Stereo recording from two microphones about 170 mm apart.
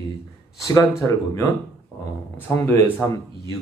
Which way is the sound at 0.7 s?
15° left (ahead or behind).